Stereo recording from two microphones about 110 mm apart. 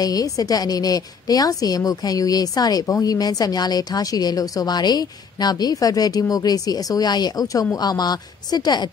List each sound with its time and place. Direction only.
0.0 s speech: 35° left (ahead or behind)